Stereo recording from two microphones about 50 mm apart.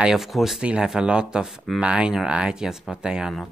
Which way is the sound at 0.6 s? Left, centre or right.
Centre.